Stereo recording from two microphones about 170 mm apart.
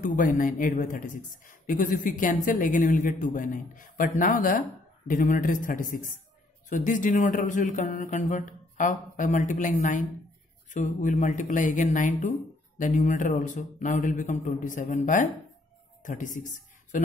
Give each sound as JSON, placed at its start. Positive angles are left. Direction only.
{"t": 0.0, "sound": "speech", "side_deg": 50}